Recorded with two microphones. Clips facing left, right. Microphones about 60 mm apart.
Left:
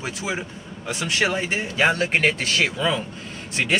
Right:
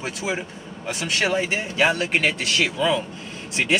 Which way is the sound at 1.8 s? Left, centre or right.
Left.